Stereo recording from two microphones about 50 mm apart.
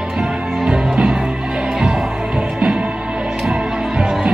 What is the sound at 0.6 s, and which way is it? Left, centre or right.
Music, centre.